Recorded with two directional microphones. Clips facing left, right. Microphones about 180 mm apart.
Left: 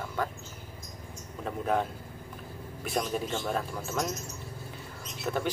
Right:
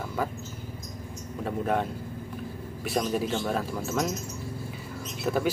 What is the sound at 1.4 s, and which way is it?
Speech, centre (ahead or behind).